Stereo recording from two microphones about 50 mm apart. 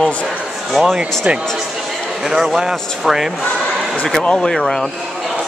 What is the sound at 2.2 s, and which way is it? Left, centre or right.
A man's voice, centre.